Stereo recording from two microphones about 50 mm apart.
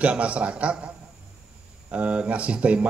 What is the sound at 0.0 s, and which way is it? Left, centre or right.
A man's voice, right.